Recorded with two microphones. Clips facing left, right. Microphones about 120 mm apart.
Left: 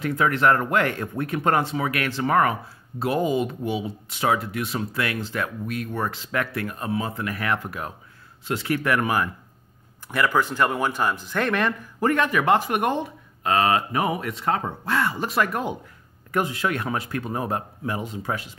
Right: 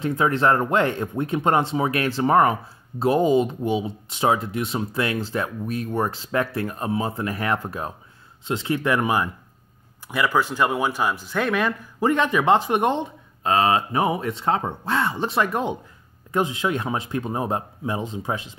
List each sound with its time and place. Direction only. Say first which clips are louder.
0.0 s speech: right 1 dB; 25° right (ahead or behind)